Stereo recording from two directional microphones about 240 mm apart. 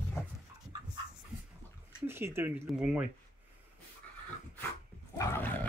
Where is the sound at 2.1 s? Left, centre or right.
Centre.